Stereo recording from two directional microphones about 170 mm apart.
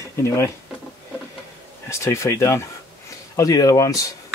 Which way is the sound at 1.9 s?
15° left (ahead or behind).